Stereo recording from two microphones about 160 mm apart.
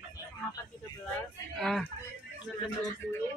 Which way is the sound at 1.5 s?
Centre (ahead or behind).